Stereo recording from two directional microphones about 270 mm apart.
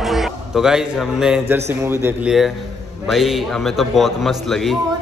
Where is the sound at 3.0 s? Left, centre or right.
Centre.